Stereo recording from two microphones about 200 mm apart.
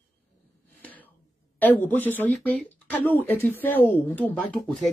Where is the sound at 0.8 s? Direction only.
10° left (ahead or behind).